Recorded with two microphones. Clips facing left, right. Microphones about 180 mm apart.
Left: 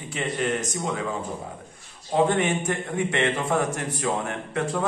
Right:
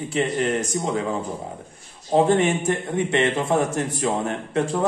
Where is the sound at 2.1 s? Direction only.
25° right (ahead or behind).